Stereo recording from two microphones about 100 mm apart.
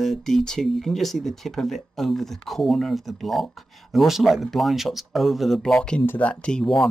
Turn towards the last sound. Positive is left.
turn(degrees=10)  # may be behind; listen again after turning